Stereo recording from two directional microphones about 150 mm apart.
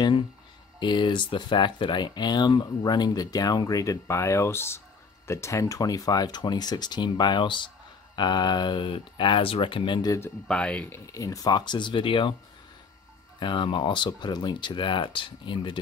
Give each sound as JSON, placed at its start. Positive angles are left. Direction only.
{"t": 0.7, "sound": "speech", "side_deg": 30}
{"t": 10.5, "sound": "speech", "side_deg": 10}
{"t": 11.1, "sound": "speech", "side_deg": 20}
{"t": 13.4, "sound": "speech", "side_deg": 30}